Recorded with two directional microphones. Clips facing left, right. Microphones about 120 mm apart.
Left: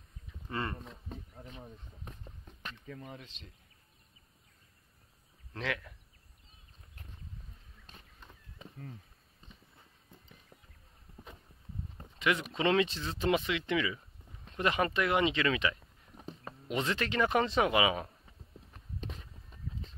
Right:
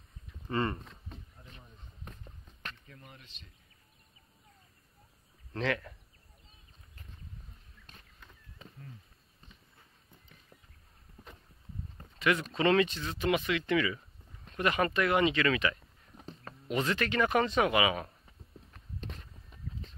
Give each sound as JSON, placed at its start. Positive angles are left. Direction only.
{"t": 0.5, "sound": "speech", "side_deg": 0}
{"t": 2.0, "sound": "a sound", "side_deg": 5}
{"t": 5.5, "sound": "speech", "side_deg": 5}
{"t": 12.0, "sound": "speech", "side_deg": 20}
{"t": 12.8, "sound": "speech", "side_deg": 30}
{"t": 13.4, "sound": "speech", "side_deg": 20}
{"t": 15.8, "sound": "a sound", "side_deg": 10}
{"t": 16.6, "sound": "speech", "side_deg": 20}
{"t": 19.0, "sound": "a sound", "side_deg": 0}